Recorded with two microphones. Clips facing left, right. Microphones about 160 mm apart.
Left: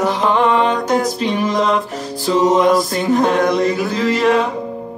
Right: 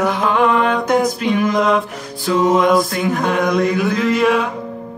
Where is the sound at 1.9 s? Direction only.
30° left (ahead or behind).